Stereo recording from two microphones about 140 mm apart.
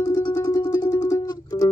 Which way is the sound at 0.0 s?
25° left (ahead or behind).